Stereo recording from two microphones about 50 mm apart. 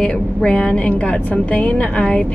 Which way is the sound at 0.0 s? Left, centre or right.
Centre.